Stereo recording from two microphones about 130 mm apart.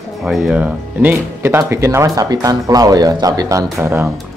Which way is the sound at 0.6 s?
10° right (ahead or behind).